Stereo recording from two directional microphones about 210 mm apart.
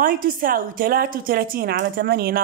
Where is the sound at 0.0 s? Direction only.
40° right (ahead or behind).